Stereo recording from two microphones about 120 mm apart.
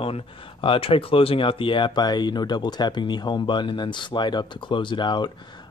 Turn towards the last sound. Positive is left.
turn(degrees=40)  # may be behind; listen again after turning